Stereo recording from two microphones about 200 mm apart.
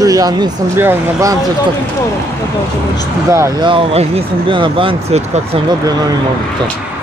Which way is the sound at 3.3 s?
20° right (ahead or behind).